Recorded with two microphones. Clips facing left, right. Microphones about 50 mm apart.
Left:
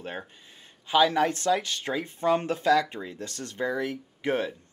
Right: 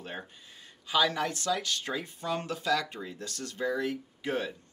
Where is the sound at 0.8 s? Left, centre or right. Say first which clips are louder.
Left 6 dB; left.